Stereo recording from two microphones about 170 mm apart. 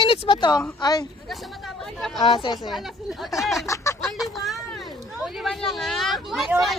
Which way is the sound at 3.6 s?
15° left (ahead or behind).